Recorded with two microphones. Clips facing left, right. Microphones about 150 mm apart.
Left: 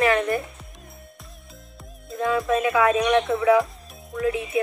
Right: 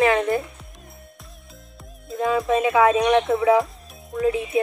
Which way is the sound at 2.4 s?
25° right (ahead or behind).